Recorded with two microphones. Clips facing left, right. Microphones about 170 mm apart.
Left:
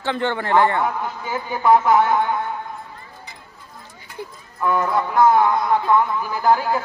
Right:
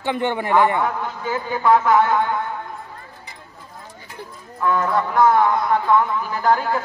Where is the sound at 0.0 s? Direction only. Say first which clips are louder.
Right 1 dB; 15° right (ahead or behind).